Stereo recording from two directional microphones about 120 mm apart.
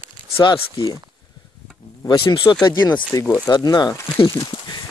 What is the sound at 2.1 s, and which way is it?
Speech, 35° left (ahead or behind).